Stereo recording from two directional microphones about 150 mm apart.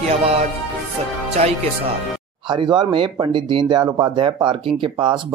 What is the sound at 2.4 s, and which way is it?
Speech, 30° right (ahead or behind).